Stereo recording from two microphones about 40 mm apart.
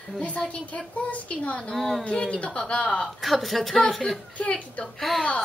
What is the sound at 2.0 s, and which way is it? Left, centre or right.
A woman's voice, left.